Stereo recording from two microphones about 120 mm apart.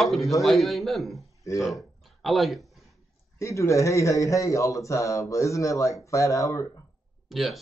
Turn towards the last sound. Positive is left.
turn(degrees=0)  # may be behind; listen again after turning